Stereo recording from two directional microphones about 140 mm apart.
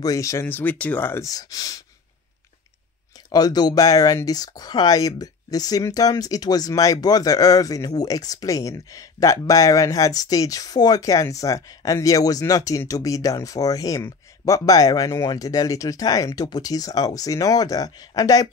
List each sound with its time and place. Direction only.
0.0 s speech: 25° left (ahead or behind)
3.3 s speech: 30° left (ahead or behind)